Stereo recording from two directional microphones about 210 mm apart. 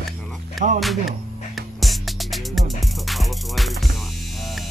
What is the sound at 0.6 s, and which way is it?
Speech, 35° right (ahead or behind).